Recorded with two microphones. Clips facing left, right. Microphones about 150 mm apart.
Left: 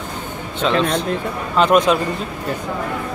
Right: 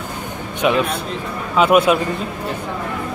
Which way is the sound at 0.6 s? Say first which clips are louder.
Even; 10° right (ahead or behind).